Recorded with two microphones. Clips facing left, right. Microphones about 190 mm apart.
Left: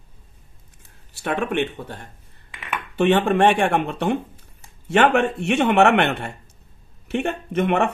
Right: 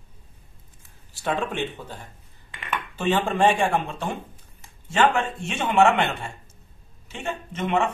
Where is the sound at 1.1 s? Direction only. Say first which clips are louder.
Left 4 dB; 65° left (ahead or behind).